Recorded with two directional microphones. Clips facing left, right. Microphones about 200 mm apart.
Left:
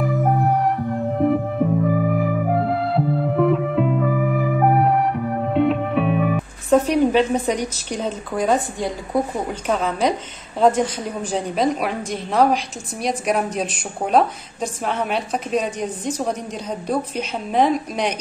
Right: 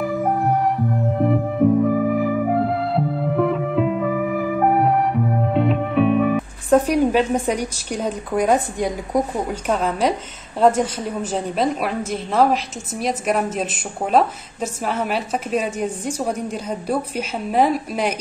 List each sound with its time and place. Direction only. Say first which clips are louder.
0.0 s music: left 1 dB; centre (ahead or behind)
10.6 s a woman's voice: even; 5° right (ahead or behind)